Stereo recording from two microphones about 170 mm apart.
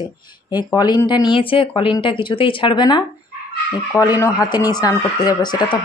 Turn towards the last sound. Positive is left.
turn(degrees=25)  # may be behind; listen again after turning